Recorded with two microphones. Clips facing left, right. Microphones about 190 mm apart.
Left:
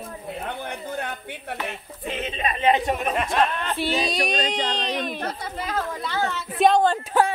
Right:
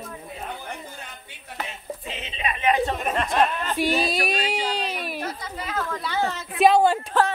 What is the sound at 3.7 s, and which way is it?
Speech, 10° right (ahead or behind).